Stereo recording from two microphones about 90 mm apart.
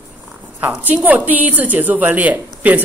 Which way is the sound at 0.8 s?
20° right (ahead or behind).